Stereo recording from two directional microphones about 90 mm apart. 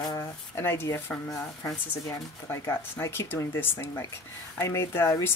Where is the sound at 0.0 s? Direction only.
35° left (ahead or behind).